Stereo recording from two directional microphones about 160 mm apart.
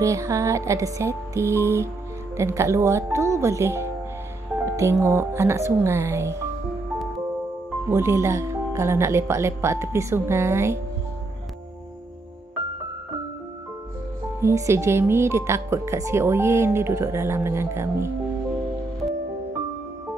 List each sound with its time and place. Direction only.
0.0 s music: 20° right (ahead or behind)
2.3 s speech: 15° right (ahead or behind)
4.6 s music: 15° right (ahead or behind)
5.0 s speech: 15° right (ahead or behind)
7.9 s speech: 15° right (ahead or behind)
14.4 s speech: 15° right (ahead or behind)